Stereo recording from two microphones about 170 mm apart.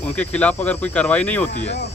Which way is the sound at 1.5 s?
40° left (ahead or behind).